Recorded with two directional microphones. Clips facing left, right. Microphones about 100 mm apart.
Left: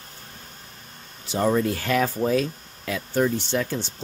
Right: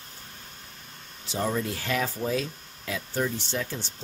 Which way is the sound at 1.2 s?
65° left (ahead or behind).